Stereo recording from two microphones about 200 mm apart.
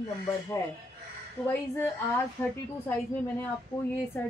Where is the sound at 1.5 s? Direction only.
10° left (ahead or behind).